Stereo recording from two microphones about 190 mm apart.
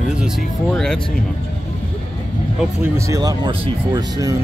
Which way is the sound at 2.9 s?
15° right (ahead or behind).